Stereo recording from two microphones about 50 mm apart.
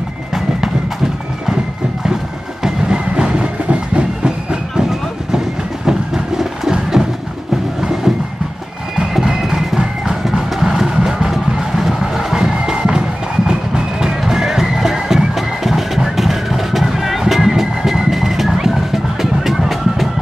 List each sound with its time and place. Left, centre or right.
2.6 s train: centre
5.9 s a sound: centre
7.8 s music: centre